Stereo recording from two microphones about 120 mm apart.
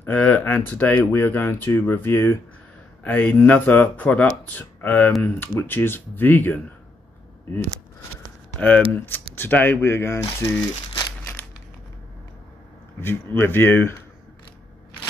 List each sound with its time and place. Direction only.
0.0 s speech: 15° left (ahead or behind)
8.5 s speech: 10° left (ahead or behind)
13.0 s speech: 20° left (ahead or behind)